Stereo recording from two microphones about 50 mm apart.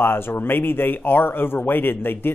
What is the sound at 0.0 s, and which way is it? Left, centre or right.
Speech, left.